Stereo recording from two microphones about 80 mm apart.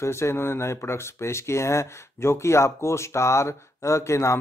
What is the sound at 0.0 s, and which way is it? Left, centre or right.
Speech, left.